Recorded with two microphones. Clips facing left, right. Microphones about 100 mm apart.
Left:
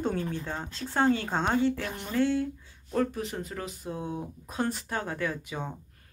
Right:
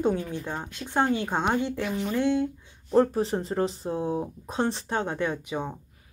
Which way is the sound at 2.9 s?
35° right (ahead or behind).